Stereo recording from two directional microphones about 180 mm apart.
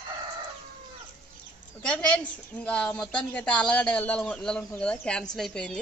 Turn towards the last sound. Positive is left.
turn(degrees=0)  # may be behind; listen again after turning